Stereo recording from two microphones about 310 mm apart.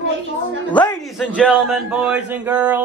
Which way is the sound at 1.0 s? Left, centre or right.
Centre.